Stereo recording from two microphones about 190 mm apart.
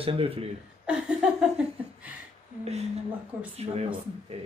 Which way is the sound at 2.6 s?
35° right (ahead or behind).